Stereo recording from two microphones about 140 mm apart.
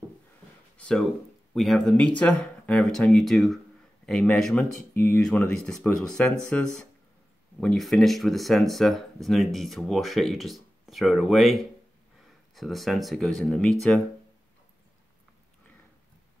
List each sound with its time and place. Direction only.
0.7 s speech: 5° left (ahead or behind)
4.9 s speech: 20° left (ahead or behind)
5.2 s speech: 5° left (ahead or behind)